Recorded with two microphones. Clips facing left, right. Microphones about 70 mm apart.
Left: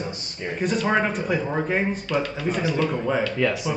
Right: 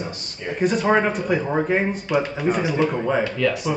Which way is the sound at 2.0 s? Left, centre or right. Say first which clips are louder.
Right 3 dB; centre.